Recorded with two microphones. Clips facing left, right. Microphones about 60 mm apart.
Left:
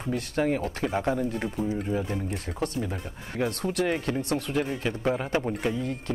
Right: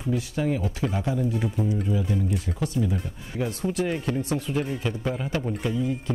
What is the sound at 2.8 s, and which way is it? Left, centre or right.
Speech, centre.